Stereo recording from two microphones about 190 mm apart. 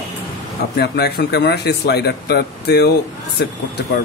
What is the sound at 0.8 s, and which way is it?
A man's voice, 60° left (ahead or behind).